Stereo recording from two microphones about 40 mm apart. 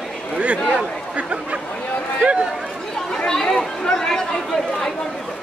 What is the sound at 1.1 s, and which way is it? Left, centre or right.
Speech, right.